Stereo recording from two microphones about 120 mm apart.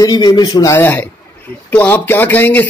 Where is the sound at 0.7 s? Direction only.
20° left (ahead or behind).